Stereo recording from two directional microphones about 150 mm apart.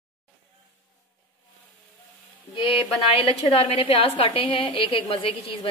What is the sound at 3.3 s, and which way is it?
A woman's voice, 40° left (ahead or behind).